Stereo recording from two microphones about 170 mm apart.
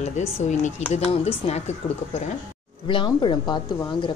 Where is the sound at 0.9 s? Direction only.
40° left (ahead or behind).